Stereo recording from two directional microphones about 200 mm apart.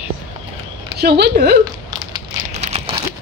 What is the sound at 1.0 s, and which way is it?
Speech, 55° right (ahead or behind).